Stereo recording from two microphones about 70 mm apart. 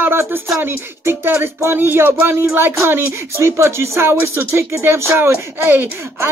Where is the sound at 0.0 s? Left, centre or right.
Right.